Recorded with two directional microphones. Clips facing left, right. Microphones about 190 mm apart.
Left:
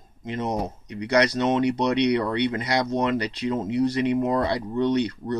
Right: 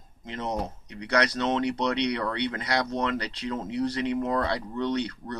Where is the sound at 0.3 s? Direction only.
15° left (ahead or behind).